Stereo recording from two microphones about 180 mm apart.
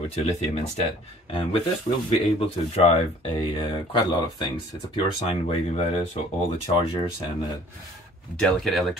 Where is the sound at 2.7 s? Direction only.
35° left (ahead or behind).